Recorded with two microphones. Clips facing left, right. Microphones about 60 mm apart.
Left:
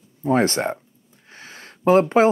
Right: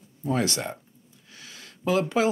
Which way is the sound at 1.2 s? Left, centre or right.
Left.